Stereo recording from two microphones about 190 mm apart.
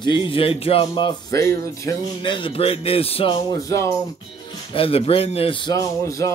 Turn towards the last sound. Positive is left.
turn(degrees=15)  # may be behind; listen again after turning